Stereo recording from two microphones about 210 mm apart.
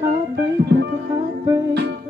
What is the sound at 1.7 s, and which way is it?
Music, 50° right (ahead or behind).